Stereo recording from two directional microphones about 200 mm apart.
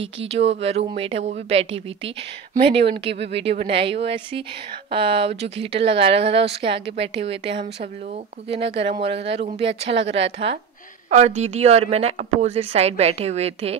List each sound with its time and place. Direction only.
0.3 s a woman's voice: 30° right (ahead or behind)